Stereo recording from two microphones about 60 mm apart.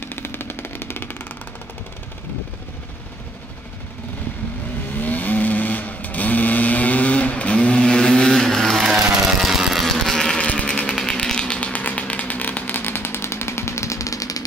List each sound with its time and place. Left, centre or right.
0.0 s vehicle: left
5.0 s vehicle: left; by 8.8 s centre
8.8 s vehicle: centre
9.8 s sheep: centre
10.4 s a sound: left
10.7 s a sound: centre; by 14.4 s left